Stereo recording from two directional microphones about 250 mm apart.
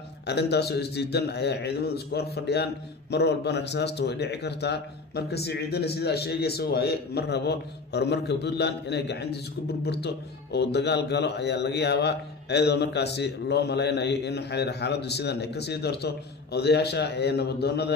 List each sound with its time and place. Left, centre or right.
0.3 s a man's voice: left